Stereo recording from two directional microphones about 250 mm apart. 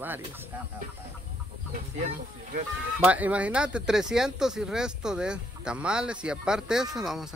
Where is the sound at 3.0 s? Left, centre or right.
Centre.